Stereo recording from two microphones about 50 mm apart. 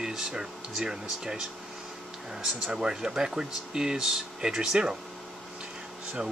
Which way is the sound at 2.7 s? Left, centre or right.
Centre.